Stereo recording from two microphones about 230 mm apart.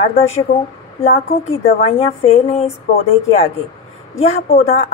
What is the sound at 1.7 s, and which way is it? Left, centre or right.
A woman's voice, left.